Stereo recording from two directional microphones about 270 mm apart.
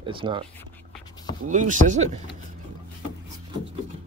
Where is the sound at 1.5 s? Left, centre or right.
Right.